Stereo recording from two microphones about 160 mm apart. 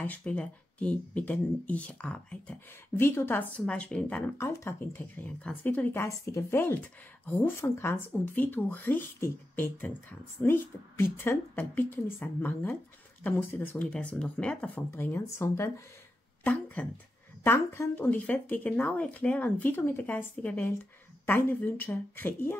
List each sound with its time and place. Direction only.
0.0 s speech: 10° left (ahead or behind)